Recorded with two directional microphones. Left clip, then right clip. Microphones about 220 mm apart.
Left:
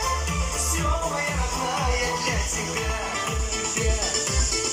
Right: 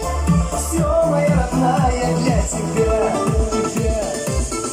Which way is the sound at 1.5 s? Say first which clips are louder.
Right 5 dB; 55° right (ahead or behind).